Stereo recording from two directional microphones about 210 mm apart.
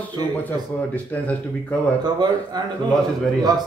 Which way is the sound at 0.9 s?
5° left (ahead or behind).